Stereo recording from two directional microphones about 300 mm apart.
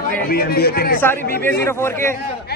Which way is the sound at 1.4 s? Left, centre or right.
Centre.